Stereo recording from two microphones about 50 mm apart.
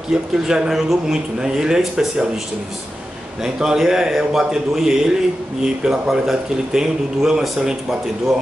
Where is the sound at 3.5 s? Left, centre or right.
Centre.